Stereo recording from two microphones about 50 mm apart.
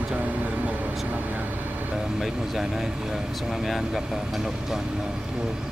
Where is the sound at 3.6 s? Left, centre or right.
Centre.